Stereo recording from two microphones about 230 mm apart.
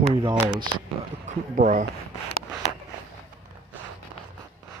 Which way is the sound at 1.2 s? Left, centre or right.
Right.